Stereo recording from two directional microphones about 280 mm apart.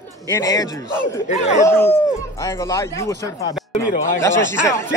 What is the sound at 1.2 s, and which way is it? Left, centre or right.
Speech, left.